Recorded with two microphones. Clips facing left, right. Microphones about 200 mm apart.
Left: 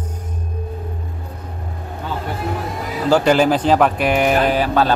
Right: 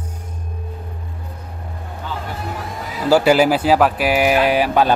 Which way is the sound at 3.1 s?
10° right (ahead or behind).